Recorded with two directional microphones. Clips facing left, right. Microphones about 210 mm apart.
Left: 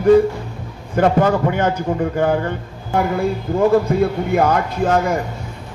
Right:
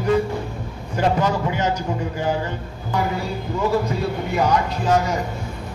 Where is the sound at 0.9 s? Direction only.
55° left (ahead or behind).